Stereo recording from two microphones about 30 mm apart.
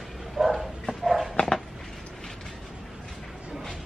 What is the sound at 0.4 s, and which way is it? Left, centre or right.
Bow-wow, centre.